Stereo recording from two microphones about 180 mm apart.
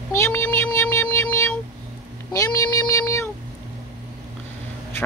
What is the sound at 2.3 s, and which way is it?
Speech, 20° left (ahead or behind).